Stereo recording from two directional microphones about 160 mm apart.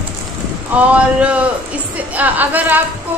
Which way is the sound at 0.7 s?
10° right (ahead or behind).